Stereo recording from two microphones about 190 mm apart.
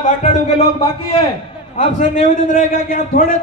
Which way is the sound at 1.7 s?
40° left (ahead or behind).